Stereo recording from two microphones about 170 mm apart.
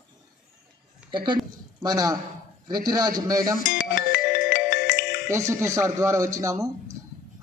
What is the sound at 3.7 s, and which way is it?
Speech, 90° left.